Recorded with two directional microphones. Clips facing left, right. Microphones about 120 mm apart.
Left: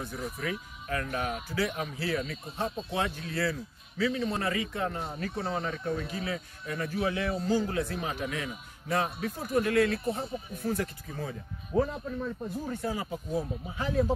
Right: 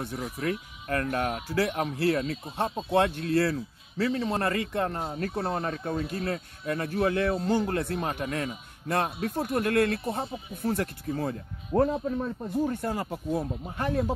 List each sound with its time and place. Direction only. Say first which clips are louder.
0.0 s speech: right 4 dB; 55° right (ahead or behind)